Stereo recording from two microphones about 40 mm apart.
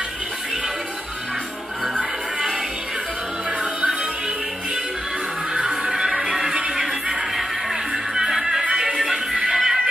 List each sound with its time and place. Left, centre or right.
5.5 s music: centre